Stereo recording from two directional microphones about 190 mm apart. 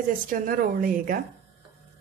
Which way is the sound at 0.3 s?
45° right (ahead or behind).